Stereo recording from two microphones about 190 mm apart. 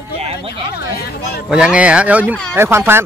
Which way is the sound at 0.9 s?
55° left (ahead or behind).